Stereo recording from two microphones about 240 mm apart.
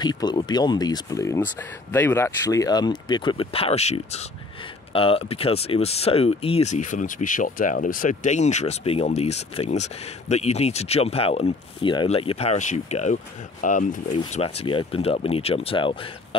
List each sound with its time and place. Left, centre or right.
0.0 s speech: centre